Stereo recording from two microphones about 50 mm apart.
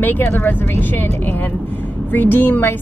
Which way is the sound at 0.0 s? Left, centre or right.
Left.